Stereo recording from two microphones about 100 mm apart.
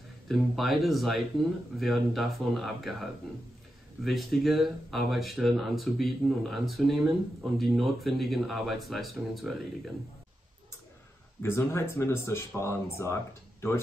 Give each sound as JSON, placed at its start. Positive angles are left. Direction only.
{"t": 0.3, "sound": "speech", "side_deg": 0}
{"t": 11.4, "sound": "speech", "side_deg": 25}